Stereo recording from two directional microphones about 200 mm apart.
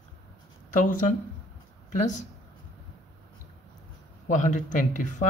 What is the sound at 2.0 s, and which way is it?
Speech, 35° left (ahead or behind).